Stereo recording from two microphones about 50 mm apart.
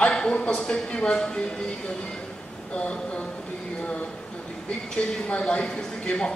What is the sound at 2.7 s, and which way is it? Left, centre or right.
Speech, left.